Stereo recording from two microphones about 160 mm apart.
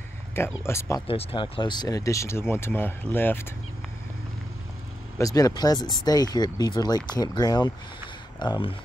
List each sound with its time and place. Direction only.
0.7 s speech: 20° left (ahead or behind)
1.0 s speech: 35° left (ahead or behind); by 3.4 s 15° left (ahead or behind)
5.2 s speech: 25° left (ahead or behind)